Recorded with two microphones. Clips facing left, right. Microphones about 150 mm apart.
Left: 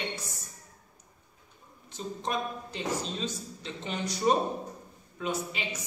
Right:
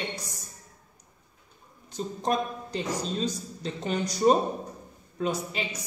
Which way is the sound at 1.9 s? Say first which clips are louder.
Right 5 dB; 40° right (ahead or behind).